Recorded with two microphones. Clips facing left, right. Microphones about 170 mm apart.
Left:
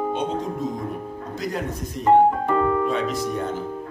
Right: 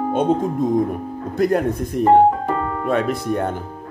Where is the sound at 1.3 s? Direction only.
55° right (ahead or behind).